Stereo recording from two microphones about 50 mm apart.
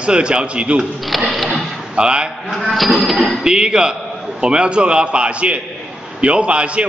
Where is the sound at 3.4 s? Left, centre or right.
Centre.